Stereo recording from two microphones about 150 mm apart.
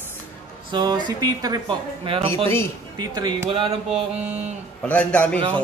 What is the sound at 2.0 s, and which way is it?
Speech, 35° right (ahead or behind).